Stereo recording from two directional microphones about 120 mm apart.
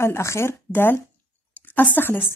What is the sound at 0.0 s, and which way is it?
A woman's voice, 20° left (ahead or behind).